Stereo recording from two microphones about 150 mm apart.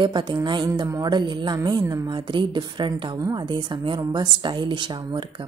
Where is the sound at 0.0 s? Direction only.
30° right (ahead or behind).